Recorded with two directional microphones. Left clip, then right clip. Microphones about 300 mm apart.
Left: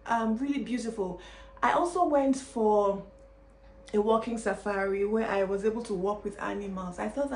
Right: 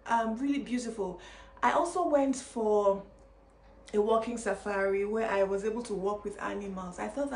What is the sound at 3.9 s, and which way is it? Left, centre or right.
A woman's voice, centre.